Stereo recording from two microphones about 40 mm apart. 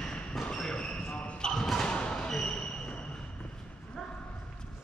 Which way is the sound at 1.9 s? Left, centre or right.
Left.